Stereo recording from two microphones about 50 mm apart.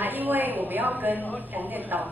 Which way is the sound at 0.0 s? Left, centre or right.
Right.